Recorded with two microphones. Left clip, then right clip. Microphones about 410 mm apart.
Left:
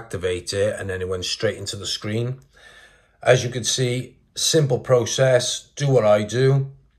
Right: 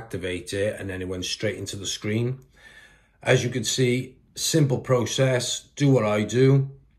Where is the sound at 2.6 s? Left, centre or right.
Centre.